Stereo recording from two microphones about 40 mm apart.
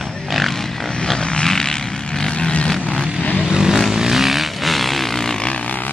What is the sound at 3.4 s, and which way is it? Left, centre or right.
Vehicle, centre.